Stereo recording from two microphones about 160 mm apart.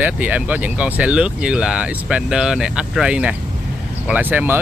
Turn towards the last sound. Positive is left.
turn(degrees=-10)  # may be behind; listen again after turning